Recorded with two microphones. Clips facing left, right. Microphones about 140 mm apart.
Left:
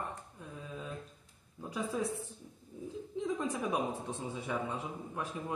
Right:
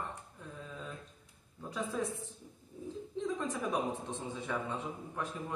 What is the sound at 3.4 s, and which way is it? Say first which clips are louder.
A man's voice: even; 10° left (ahead or behind).